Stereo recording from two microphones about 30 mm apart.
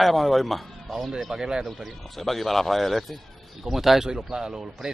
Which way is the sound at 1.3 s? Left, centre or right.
Right.